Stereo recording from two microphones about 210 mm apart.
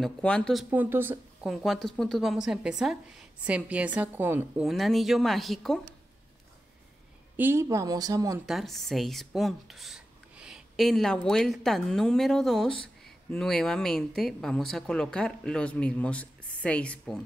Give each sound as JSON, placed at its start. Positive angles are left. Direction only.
{"t": 0.0, "sound": "speech", "side_deg": 5}
{"t": 7.3, "sound": "speech", "side_deg": -10}
{"t": 8.5, "sound": "speech", "side_deg": 0}